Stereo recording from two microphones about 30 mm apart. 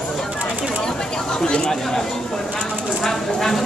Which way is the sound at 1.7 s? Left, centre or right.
Centre.